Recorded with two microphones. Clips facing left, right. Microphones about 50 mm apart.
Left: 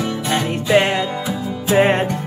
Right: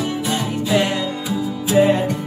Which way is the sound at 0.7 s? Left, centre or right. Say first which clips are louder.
Left 4 dB; left.